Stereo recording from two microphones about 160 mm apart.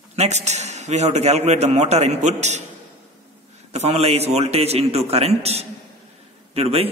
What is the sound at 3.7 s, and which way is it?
A man's voice, 40° right (ahead or behind).